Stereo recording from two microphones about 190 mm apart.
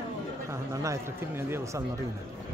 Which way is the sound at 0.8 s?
15° right (ahead or behind).